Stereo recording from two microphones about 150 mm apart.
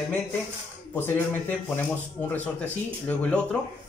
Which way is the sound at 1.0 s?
15° left (ahead or behind).